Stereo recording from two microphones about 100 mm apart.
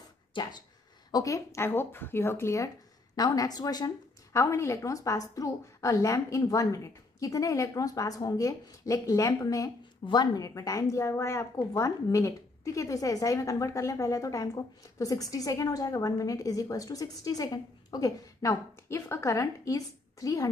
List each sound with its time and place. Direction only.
0.3 s speech: 45° left (ahead or behind)
1.1 s speech: 35° left (ahead or behind)
3.2 s a woman's voice: 40° left (ahead or behind)
10.0 s a woman's voice: 45° left (ahead or behind)